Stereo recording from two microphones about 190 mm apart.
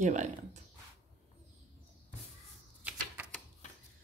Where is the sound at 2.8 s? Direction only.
10° right (ahead or behind).